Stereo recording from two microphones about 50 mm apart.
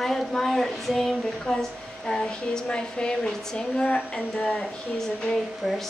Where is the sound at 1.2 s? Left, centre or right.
Centre.